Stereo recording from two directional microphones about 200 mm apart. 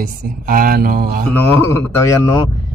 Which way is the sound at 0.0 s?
45° right (ahead or behind).